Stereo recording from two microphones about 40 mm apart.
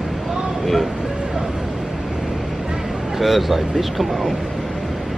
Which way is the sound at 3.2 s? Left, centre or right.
Centre.